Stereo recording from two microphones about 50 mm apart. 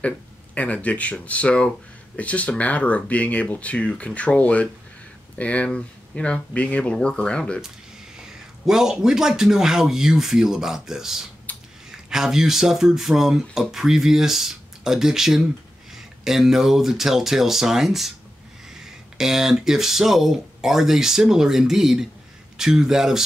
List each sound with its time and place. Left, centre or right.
0.6 s speech: left
8.6 s speech: centre
11.5 s a sound: left
12.1 s speech: centre
19.1 s speech: centre